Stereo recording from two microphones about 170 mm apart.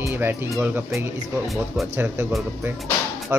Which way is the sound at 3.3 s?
15° right (ahead or behind).